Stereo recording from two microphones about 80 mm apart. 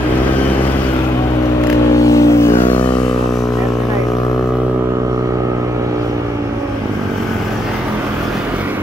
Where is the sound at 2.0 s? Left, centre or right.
Left.